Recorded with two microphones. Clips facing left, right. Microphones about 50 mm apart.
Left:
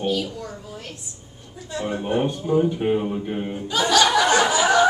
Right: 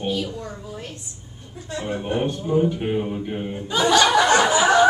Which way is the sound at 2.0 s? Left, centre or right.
Centre.